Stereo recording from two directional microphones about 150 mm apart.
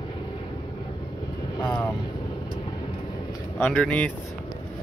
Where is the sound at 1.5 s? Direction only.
30° left (ahead or behind).